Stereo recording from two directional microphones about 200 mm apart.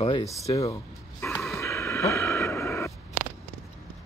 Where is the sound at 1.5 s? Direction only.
15° left (ahead or behind).